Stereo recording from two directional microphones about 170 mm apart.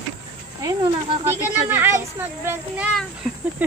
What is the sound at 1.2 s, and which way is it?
Speech, 10° right (ahead or behind).